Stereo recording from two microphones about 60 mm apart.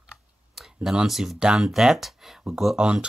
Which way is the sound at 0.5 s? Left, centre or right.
Centre.